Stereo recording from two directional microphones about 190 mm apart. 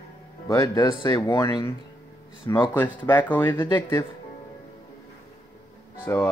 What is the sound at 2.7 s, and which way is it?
Speech, 10° left (ahead or behind).